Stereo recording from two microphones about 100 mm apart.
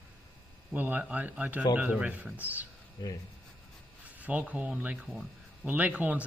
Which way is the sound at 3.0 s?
45° left (ahead or behind).